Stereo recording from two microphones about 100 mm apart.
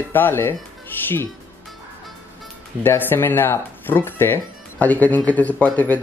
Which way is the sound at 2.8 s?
20° left (ahead or behind).